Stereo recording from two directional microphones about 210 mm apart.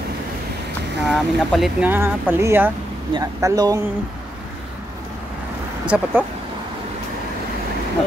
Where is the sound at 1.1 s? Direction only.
Centre (ahead or behind); by 3.8 s 15° right (ahead or behind).